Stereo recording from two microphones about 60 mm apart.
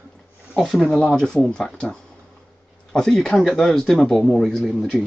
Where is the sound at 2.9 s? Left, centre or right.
Centre.